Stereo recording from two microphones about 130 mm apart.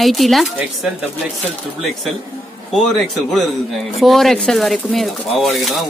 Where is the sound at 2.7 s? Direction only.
Centre (ahead or behind).